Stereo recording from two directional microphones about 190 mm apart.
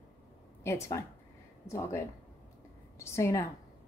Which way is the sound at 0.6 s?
15° left (ahead or behind).